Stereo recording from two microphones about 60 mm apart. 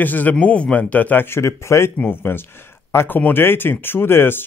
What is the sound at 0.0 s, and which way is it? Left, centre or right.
A man's voice, left.